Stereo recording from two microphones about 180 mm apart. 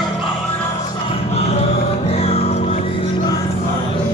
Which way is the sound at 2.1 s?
35° left (ahead or behind).